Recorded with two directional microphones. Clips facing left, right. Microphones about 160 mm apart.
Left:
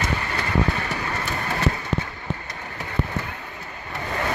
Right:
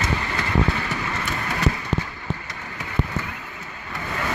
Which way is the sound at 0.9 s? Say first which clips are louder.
Even; 30° left (ahead or behind).